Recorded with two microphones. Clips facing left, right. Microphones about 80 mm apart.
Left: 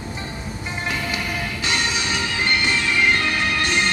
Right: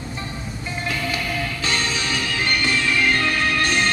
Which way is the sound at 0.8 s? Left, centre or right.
Centre.